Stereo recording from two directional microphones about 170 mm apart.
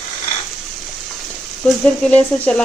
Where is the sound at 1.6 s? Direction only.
5° left (ahead or behind).